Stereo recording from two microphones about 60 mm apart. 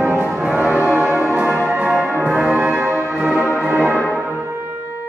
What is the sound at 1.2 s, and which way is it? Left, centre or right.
Music, right.